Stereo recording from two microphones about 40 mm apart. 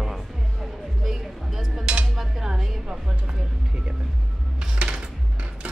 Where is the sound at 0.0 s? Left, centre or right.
Centre.